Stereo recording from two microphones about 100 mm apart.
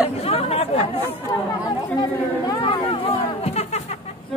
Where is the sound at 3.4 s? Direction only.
90° left.